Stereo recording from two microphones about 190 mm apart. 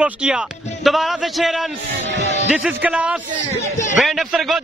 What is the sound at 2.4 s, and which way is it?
A man's voice, 5° right (ahead or behind).